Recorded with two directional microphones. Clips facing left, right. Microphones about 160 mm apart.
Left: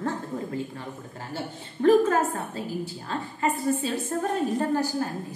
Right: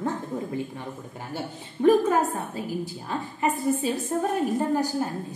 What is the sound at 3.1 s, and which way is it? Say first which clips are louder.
A woman's voice: right 1 dB; 15° right (ahead or behind).